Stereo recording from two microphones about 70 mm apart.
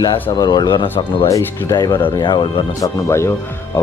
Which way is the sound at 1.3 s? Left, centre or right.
Left.